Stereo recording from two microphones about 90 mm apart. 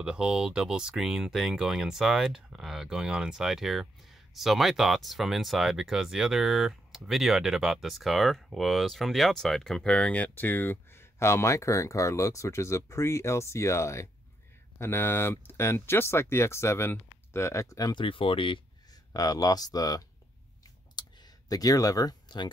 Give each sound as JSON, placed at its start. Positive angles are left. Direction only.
{"t": 0.0, "sound": "speech", "side_deg": -10}
{"t": 17.9, "sound": "speech", "side_deg": 75}
{"t": 19.1, "sound": "speech", "side_deg": 40}
{"t": 21.0, "sound": "clicking", "side_deg": 55}
{"t": 21.5, "sound": "speech", "side_deg": 45}